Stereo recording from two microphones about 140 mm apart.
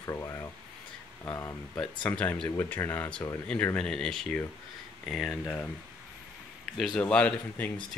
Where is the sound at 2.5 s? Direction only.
15° left (ahead or behind); by 5.4 s centre (ahead or behind).